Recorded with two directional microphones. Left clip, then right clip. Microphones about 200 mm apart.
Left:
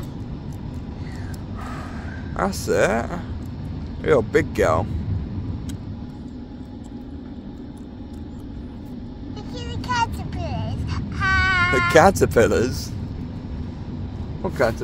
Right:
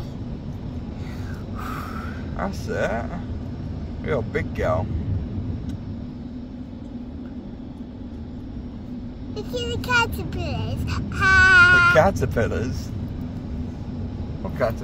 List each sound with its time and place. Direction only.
2.3 s speech: 65° left (ahead or behind)
9.5 s child singing: 45° right (ahead or behind)
11.9 s speech: 65° left (ahead or behind)